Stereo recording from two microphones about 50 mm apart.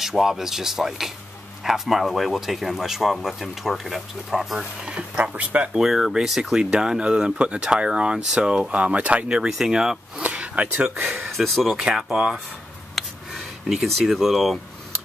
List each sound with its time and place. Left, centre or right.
0.0 s speech: centre
4.8 s speech: right
5.7 s speech: centre; by 9.2 s right
9.5 s speech: centre
10.2 s a sound: right
11.2 s speech: centre
11.7 s speech: centre
13.0 s a sound: centre
13.3 s speech: centre